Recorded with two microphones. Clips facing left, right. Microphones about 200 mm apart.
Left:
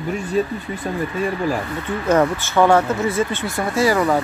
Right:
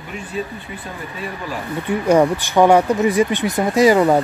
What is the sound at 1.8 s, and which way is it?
Speech, 15° right (ahead or behind).